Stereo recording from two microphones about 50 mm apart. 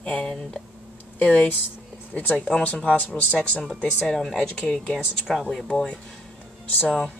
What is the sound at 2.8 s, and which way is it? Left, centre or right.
Speech, left.